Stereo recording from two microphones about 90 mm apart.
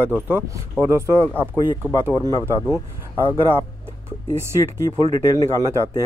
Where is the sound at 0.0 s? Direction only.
25° right (ahead or behind).